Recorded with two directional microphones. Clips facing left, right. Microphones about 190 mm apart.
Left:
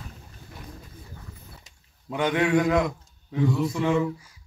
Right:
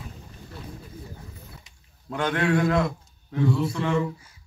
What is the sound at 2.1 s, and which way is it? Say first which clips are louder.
A man's voice: left 1 dB; 15° left (ahead or behind).